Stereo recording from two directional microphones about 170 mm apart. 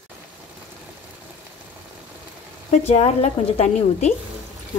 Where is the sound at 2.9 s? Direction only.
40° left (ahead or behind).